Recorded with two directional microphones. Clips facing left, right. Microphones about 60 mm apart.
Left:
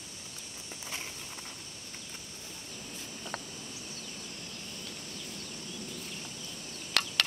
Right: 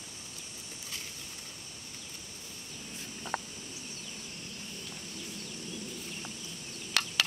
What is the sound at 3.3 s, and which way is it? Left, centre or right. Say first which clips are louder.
Insect: right 5 dB; centre.